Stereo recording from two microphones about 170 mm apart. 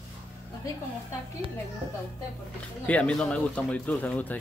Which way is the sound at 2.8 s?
5° left (ahead or behind).